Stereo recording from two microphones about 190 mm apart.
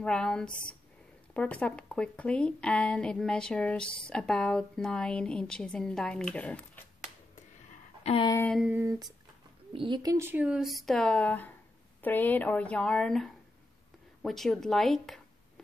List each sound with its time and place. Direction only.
0.0 s a woman's voice: 5° left (ahead or behind)
8.0 s speech: 30° left (ahead or behind)
8.3 s speech: 10° left (ahead or behind)
8.5 s a sound: 5° right (ahead or behind)
9.7 s a woman's voice: 25° right (ahead or behind); by 15.2 s centre (ahead or behind)